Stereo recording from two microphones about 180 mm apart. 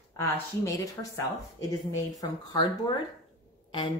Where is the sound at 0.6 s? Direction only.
15° left (ahead or behind).